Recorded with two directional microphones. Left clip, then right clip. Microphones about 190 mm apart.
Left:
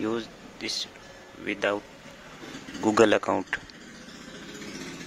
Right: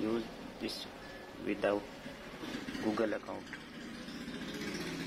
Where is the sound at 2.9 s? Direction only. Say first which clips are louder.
Left 15 dB; 40° left (ahead or behind).